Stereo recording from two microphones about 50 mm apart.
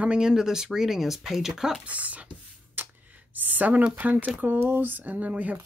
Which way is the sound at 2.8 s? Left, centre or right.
Right.